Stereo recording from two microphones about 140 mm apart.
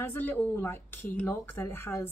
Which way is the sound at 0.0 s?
15° left (ahead or behind).